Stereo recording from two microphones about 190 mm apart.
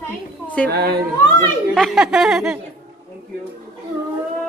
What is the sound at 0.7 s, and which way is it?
A capella, 55° right (ahead or behind).